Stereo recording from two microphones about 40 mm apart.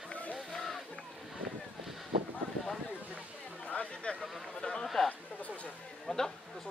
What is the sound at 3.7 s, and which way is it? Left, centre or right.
Chatter, left.